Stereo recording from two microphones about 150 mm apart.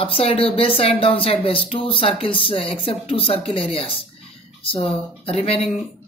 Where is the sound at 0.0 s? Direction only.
40° left (ahead or behind).